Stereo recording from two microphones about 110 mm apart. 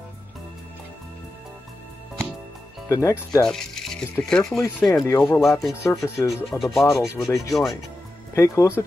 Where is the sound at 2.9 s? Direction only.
30° left (ahead or behind).